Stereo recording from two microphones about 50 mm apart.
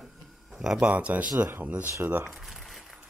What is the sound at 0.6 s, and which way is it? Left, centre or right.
Speech, centre.